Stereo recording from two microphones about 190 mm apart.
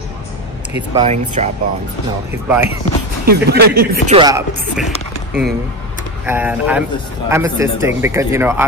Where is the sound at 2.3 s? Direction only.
10° right (ahead or behind).